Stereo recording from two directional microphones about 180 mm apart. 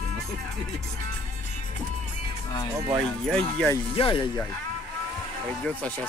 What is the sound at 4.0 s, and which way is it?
Speech, 30° left (ahead or behind).